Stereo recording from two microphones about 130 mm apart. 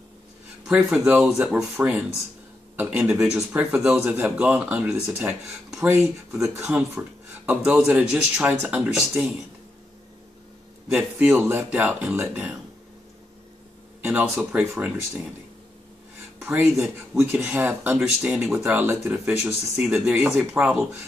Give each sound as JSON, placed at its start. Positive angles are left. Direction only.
{"t": 0.7, "sound": "speech", "side_deg": -5}
{"t": 6.4, "sound": "a man's voice", "side_deg": -20}
{"t": 10.9, "sound": "speech", "side_deg": -5}
{"t": 14.0, "sound": "speech", "side_deg": -15}
{"t": 16.3, "sound": "speech", "side_deg": -15}
{"t": 16.7, "sound": "speech", "side_deg": -5}
{"t": 17.2, "sound": "speech", "side_deg": -15}